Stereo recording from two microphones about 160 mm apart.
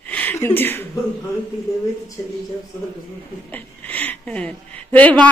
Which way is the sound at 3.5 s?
10° left (ahead or behind).